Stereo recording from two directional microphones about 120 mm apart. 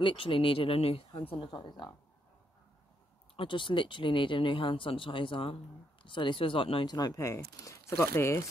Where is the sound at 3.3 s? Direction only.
45° left (ahead or behind).